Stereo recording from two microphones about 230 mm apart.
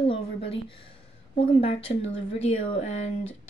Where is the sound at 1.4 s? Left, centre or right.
Left.